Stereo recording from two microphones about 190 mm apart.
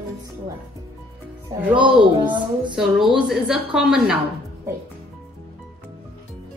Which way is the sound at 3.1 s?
5° right (ahead or behind).